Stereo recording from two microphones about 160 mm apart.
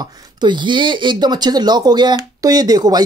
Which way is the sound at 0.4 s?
30° right (ahead or behind).